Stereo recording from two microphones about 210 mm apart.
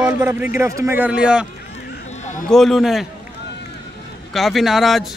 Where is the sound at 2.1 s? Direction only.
35° left (ahead or behind).